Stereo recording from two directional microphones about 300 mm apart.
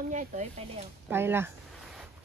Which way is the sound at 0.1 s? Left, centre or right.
Right.